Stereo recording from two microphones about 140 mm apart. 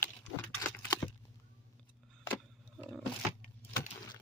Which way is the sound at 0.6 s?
20° left (ahead or behind).